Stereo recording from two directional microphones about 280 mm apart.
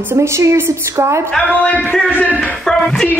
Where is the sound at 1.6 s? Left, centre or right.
Centre.